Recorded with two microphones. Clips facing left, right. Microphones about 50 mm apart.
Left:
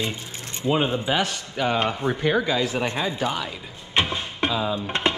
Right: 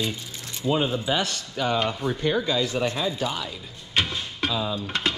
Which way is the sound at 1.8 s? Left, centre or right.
Left.